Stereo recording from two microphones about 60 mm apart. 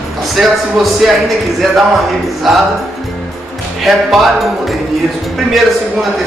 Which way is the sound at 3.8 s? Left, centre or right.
Centre.